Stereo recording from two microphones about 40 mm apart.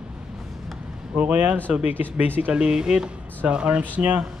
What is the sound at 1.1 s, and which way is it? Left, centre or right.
Speech, right.